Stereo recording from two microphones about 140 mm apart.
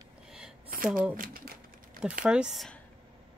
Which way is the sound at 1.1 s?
90° right.